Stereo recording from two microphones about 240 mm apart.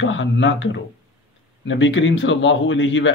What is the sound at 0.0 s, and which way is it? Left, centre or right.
Speech, left.